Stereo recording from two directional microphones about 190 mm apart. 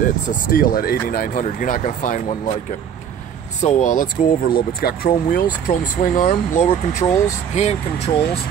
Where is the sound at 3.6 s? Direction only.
40° left (ahead or behind).